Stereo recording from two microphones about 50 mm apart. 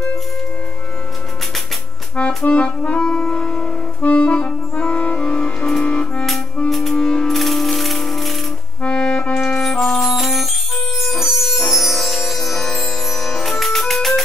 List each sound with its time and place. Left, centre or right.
2.1 s music: left
4.0 s clarinet: left
5.9 s music: centre
6.7 s music: centre
8.8 s music: left
9.6 s music: centre